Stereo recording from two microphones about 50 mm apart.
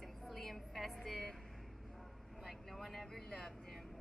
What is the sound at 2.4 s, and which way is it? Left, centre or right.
Vehicle, centre.